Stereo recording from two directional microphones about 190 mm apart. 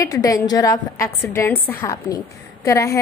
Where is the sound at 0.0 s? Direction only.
15° left (ahead or behind).